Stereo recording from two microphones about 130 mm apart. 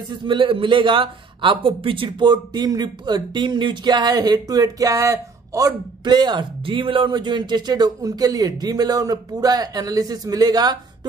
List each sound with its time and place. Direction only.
0.1 s a man's voice: 40° right (ahead or behind)